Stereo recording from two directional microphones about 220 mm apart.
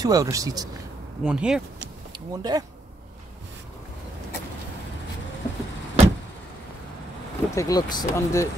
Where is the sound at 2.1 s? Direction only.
20° right (ahead or behind).